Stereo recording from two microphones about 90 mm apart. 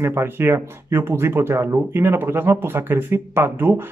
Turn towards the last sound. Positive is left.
turn(degrees=-25)  # may be behind; listen again after turning